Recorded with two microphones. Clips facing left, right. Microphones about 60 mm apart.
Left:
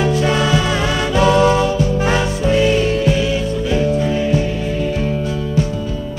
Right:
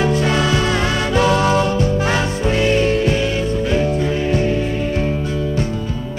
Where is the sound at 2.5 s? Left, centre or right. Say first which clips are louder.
Left 1 dB; centre.